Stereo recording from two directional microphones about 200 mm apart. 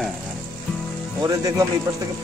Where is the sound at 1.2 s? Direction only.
15° right (ahead or behind).